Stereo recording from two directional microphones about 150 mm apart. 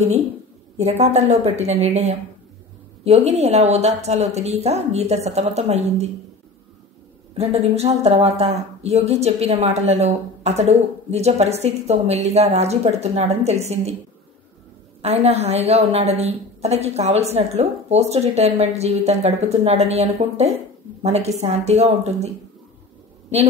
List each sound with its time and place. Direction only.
0.7 s a woman's voice: 45° right (ahead or behind)
7.3 s a woman's voice: 45° right (ahead or behind)
15.0 s a woman's voice: 45° right (ahead or behind)